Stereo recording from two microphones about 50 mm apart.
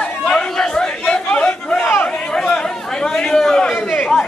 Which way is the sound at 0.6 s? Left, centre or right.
Centre.